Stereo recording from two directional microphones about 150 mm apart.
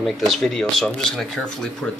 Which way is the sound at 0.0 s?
Centre (ahead or behind).